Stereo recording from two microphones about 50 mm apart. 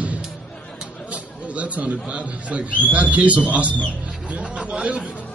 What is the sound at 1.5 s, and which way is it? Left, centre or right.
A man's voice, right.